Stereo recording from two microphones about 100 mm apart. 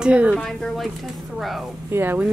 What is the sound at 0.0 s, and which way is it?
Speech, 10° right (ahead or behind).